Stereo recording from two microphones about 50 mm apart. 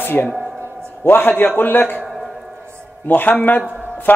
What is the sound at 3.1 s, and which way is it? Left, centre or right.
Speech, left.